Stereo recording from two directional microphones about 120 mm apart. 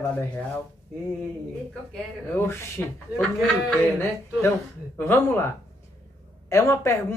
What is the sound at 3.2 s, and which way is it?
Speech, 5° left (ahead or behind).